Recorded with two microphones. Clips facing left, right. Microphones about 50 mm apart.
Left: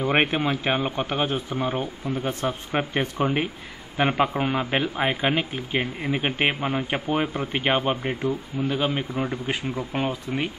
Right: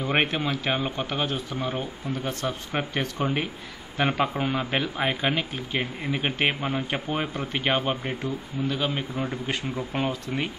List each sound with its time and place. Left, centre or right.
0.0 s a man's voice: centre